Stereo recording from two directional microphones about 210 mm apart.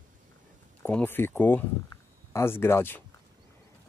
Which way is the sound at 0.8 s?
10° left (ahead or behind).